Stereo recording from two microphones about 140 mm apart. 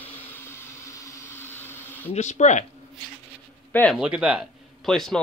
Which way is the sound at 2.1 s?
55° left (ahead or behind).